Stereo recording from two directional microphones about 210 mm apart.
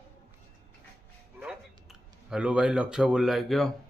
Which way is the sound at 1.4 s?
5° right (ahead or behind).